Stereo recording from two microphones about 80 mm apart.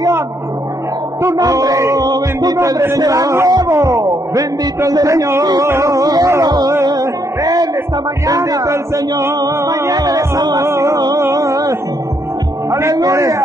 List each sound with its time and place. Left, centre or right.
1.2 s music: right
3.7 s a sound: right
4.4 s music: right
5.4 s music: right
5.7 s music: right
10.6 s music: right
12.9 s music: right